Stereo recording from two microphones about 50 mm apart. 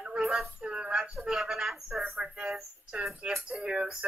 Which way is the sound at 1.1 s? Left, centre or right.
Centre.